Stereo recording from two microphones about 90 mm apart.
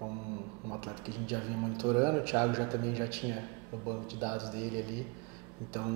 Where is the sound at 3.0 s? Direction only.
15° right (ahead or behind).